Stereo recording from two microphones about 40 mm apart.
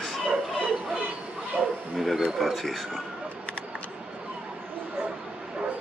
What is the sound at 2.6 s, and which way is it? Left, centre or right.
Speech, centre.